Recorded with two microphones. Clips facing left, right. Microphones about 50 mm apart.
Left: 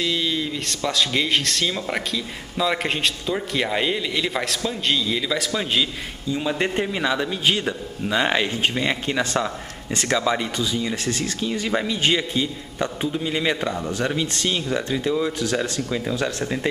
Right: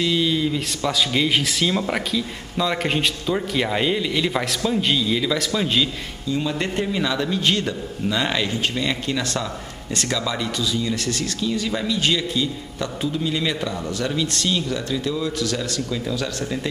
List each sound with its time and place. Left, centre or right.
0.0 s a man's voice: centre
6.4 s a man's voice: centre